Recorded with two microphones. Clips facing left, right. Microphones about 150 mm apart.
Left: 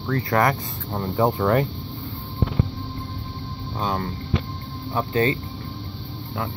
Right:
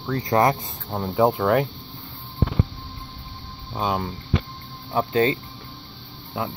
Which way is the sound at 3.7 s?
15° right (ahead or behind).